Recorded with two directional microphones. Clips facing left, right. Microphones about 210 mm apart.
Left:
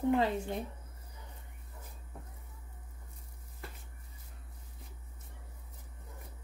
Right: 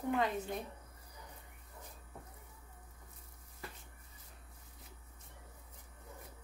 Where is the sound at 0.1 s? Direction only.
30° left (ahead or behind).